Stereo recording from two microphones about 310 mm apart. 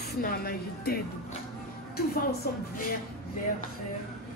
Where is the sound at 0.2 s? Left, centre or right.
Left.